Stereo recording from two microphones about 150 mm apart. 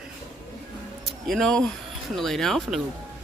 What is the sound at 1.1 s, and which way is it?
A woman's voice, centre (ahead or behind).